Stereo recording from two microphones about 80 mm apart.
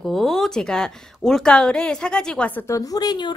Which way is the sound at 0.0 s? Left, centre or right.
Centre.